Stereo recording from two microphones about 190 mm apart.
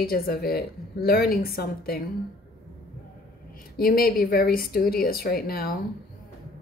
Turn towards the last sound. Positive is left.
turn(degrees=50)  # may be behind; listen again after turning